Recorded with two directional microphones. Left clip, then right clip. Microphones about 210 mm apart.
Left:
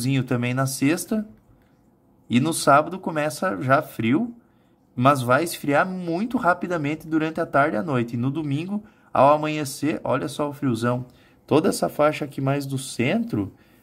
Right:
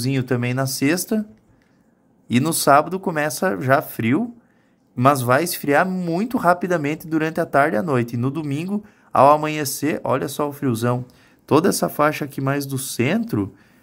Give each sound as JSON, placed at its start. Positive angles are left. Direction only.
{"t": 0.0, "sound": "speech", "side_deg": -10}
{"t": 2.2, "sound": "speech", "side_deg": -15}